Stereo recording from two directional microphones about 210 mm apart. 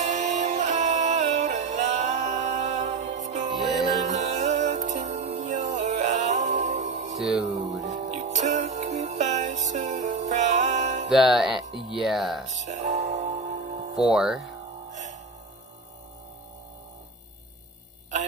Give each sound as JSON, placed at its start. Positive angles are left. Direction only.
{"t": 0.0, "sound": "music", "side_deg": -35}
{"t": 3.5, "sound": "music", "side_deg": 0}
{"t": 4.0, "sound": "music", "side_deg": -35}
{"t": 7.2, "sound": "music", "side_deg": 0}
{"t": 7.8, "sound": "music", "side_deg": -35}
{"t": 11.1, "sound": "speech", "side_deg": 0}
{"t": 12.5, "sound": "music", "side_deg": -35}
{"t": 14.1, "sound": "speech", "side_deg": -5}
{"t": 14.9, "sound": "music", "side_deg": -35}